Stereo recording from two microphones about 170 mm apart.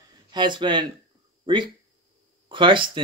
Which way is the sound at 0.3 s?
25° right (ahead or behind).